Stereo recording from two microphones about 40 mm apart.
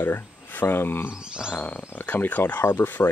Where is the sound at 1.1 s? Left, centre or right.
Centre.